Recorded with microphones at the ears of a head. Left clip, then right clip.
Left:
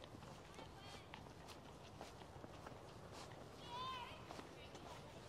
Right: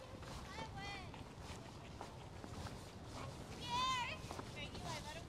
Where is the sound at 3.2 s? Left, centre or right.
Right.